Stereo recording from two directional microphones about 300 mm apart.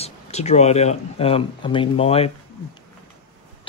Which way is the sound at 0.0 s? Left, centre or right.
Left.